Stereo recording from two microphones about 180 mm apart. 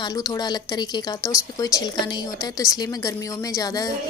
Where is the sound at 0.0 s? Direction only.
20° left (ahead or behind).